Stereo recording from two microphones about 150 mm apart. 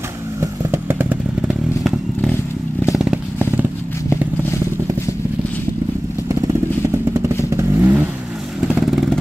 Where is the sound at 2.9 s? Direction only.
5° right (ahead or behind).